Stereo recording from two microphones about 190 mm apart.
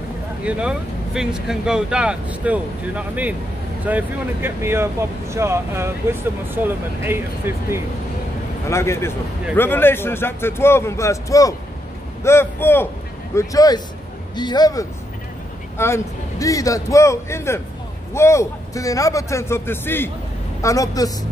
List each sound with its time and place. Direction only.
0.4 s speech: 5° right (ahead or behind)
8.6 s a man's voice: 15° left (ahead or behind)